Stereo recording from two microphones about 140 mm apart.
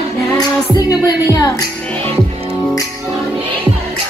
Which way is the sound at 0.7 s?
30° left (ahead or behind).